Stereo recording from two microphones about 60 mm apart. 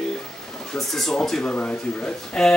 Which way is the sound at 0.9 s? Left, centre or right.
Centre.